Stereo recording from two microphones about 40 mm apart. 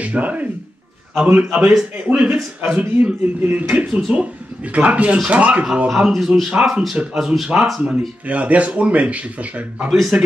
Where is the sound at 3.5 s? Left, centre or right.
Right.